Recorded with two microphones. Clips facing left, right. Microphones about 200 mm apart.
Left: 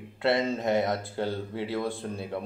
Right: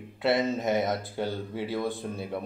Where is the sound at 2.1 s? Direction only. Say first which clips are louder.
Even; centre (ahead or behind).